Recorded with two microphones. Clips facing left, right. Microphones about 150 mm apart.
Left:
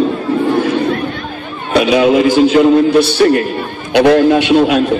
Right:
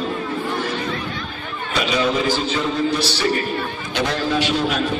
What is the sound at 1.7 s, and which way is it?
A man's voice, 60° left (ahead or behind).